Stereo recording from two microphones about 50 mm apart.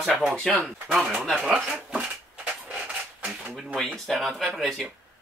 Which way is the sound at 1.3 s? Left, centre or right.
Centre.